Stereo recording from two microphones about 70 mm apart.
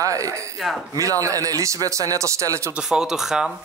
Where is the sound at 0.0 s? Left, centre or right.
Right.